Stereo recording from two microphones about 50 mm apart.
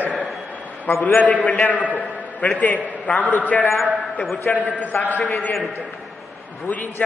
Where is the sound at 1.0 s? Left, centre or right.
Left.